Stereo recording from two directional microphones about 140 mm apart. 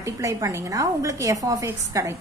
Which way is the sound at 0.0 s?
20° right (ahead or behind).